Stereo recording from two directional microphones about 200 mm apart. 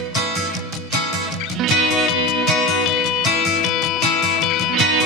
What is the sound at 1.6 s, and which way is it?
Music, centre (ahead or behind).